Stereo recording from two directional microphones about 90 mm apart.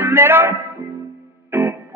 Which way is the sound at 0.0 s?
25° right (ahead or behind).